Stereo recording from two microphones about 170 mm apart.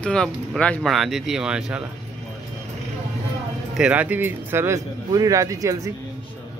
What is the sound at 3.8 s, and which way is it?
Speech, 10° right (ahead or behind).